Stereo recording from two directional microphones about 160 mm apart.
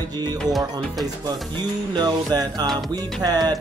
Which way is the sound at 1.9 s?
25° right (ahead or behind).